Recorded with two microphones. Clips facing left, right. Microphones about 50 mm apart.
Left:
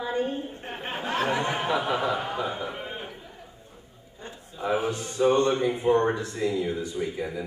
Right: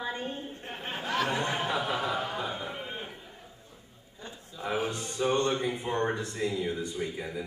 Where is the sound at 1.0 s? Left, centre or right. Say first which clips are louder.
Left 3 dB; left.